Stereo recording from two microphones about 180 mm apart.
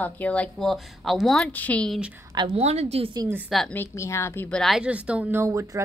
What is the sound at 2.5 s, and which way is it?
Speech, 35° right (ahead or behind).